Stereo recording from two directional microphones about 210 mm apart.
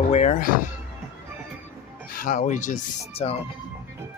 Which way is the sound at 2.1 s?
35° left (ahead or behind).